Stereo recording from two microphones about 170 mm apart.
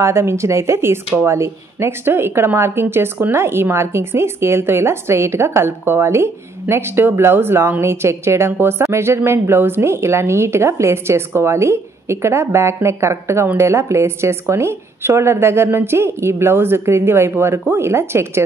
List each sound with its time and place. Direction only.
0.0 s a woman's voice: 15° right (ahead or behind)